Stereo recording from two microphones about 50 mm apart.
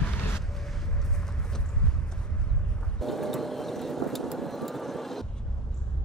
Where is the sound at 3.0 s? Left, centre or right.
Centre.